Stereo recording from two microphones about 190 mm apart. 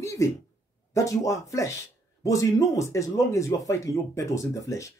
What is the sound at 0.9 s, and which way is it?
Speech, 15° left (ahead or behind).